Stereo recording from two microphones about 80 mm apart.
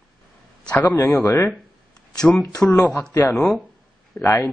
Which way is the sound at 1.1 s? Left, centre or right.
Left.